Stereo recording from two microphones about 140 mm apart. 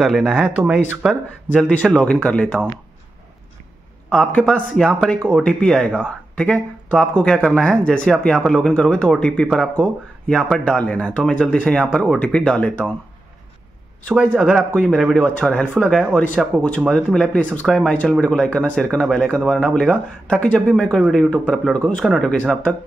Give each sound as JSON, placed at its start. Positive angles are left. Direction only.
{"t": 0.0, "sound": "speech", "side_deg": 5}
{"t": 1.5, "sound": "speech", "side_deg": 5}
{"t": 4.1, "sound": "speech", "side_deg": 5}
{"t": 14.1, "sound": "speech", "side_deg": 0}